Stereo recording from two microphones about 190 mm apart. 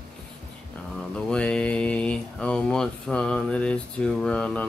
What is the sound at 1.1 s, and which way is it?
Speech, 5° left (ahead or behind).